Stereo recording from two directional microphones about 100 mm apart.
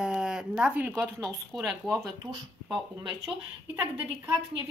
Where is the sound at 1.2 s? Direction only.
Centre (ahead or behind).